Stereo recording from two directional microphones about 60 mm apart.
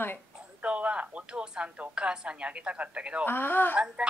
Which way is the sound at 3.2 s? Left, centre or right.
Left.